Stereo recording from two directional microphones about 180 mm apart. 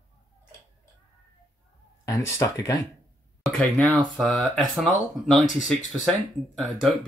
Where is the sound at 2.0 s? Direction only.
15° left (ahead or behind).